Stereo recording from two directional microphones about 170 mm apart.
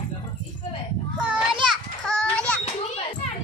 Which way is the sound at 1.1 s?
Centre (ahead or behind).